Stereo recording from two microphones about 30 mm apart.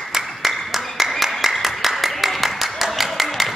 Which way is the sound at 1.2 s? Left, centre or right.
Centre.